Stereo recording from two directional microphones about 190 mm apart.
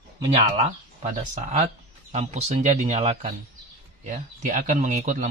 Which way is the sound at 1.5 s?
35° right (ahead or behind).